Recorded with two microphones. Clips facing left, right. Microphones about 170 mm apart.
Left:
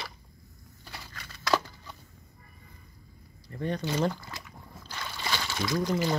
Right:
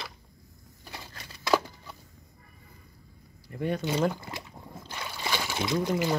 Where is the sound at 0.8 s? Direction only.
15° right (ahead or behind).